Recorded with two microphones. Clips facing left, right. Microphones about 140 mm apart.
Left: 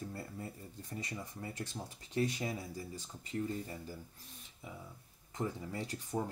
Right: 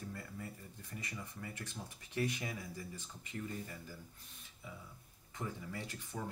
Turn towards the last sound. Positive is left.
turn(degrees=40)  # may be behind; listen again after turning